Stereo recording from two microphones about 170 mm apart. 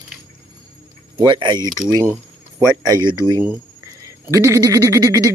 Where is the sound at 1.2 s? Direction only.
25° right (ahead or behind).